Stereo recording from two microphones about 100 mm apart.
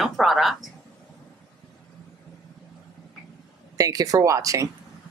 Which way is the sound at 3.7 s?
35° right (ahead or behind).